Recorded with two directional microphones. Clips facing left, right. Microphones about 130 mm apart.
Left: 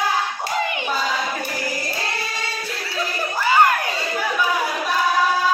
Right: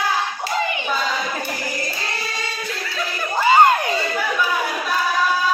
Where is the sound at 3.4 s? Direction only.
25° right (ahead or behind).